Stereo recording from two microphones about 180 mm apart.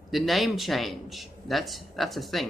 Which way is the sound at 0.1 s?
Centre (ahead or behind).